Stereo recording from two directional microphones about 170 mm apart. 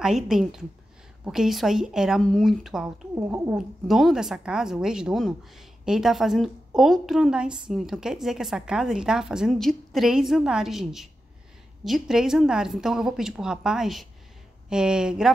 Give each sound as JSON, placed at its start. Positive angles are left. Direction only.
{"t": 0.0, "sound": "a woman's voice", "side_deg": 0}
{"t": 3.2, "sound": "speech", "side_deg": -15}
{"t": 3.5, "sound": "a woman's voice", "side_deg": 0}